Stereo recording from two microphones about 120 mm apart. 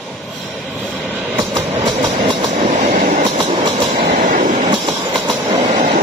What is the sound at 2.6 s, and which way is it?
Train, 70° right (ahead or behind).